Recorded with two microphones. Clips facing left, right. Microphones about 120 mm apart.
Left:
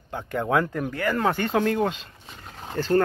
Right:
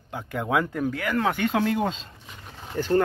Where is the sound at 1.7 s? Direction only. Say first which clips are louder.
Left 1 dB; 20° right (ahead or behind).